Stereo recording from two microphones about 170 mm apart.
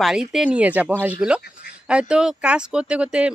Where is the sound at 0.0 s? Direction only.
5° right (ahead or behind).